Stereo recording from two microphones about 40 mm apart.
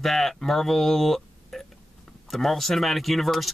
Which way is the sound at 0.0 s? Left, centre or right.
Centre.